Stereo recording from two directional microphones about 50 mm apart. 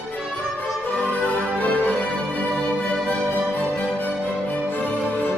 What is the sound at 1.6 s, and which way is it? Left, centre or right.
Music, left.